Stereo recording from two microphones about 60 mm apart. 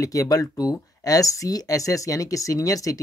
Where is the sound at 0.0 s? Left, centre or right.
Left.